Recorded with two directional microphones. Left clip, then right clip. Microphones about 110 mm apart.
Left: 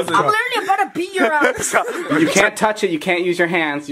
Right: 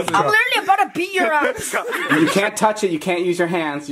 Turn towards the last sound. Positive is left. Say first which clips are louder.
# left 2 dB
turn(degrees=5)  # may be behind; listen again after turning